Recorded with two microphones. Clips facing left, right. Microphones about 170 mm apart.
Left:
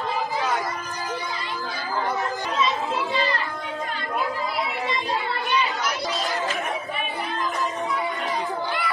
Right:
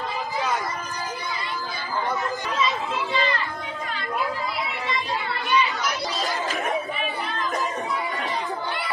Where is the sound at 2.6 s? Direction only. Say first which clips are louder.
Left 2 dB; 40° left (ahead or behind).